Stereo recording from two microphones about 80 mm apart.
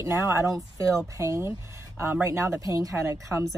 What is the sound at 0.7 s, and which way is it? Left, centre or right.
Speech, right.